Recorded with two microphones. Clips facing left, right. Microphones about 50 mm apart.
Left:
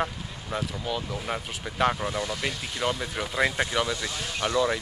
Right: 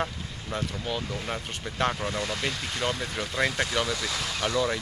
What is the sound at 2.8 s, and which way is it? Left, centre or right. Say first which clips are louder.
Speech: left 2 dB; left.